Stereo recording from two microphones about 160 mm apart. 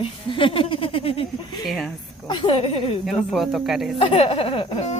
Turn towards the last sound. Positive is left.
turn(degrees=35)  # may be behind; listen again after turning